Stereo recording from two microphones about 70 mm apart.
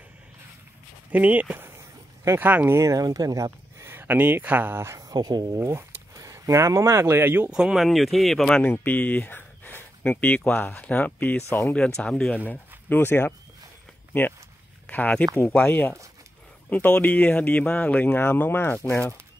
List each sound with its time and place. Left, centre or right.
1.1 s speech: right
2.8 s speech: right
3.8 s speech: right
5.0 s speech: right
5.6 s speech: right
7.5 s speech: centre
8.6 s speech: left
12.4 s speech: left
14.9 s speech: left